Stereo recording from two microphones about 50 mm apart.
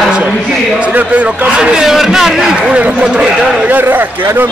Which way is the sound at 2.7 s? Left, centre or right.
Right.